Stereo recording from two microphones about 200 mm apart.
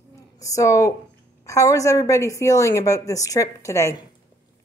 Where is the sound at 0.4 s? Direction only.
15° left (ahead or behind).